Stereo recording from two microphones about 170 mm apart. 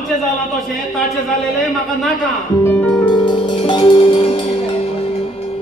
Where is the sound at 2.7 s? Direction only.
10° left (ahead or behind).